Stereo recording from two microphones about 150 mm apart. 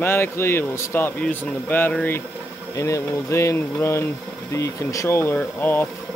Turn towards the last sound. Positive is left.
turn(degrees=15)  # may be behind; listen again after turning